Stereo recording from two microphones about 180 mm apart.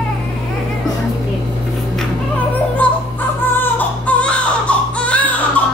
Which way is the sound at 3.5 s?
10° left (ahead or behind).